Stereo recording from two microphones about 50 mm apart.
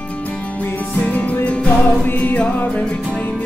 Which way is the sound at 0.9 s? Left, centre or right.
Left.